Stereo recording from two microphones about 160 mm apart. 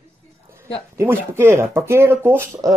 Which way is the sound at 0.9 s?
15° right (ahead or behind).